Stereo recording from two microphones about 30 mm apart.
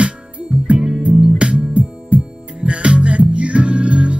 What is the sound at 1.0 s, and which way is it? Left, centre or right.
Music, right.